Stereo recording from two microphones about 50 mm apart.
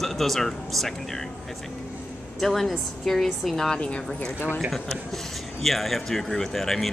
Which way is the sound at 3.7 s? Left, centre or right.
Left.